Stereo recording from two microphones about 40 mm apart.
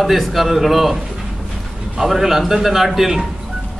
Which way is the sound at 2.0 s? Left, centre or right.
Centre.